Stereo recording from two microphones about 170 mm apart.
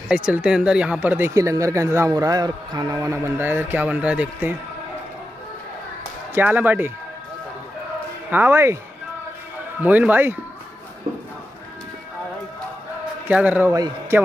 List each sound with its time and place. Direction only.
0.1 s a man's voice: 5° right (ahead or behind)
6.3 s a man's voice: 10° right (ahead or behind)
8.3 s a man's voice: 10° right (ahead or behind)
9.8 s a man's voice: 10° right (ahead or behind)
13.3 s a man's voice: 10° right (ahead or behind)